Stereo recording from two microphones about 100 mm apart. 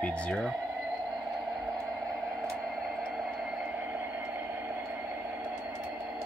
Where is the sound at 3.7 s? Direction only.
20° right (ahead or behind).